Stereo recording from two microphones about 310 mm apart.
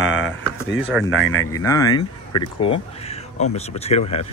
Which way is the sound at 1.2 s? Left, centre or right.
Centre.